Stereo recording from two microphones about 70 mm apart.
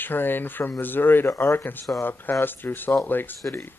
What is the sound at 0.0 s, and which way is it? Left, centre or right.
Speech, left.